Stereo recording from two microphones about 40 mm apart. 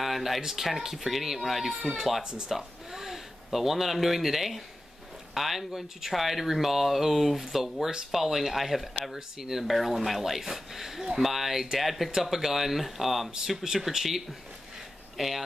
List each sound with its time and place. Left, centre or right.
0.0 s speech: centre
2.2 s speech: right
2.5 s speech: centre